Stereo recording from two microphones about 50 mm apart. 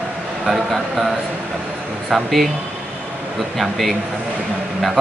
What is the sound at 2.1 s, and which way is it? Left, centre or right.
Speech, centre.